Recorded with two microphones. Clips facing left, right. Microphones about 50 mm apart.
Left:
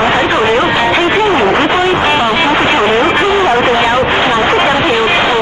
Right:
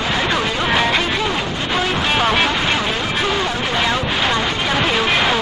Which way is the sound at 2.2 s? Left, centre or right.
Centre.